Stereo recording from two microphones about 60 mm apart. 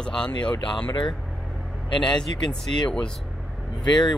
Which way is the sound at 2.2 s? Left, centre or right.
Centre.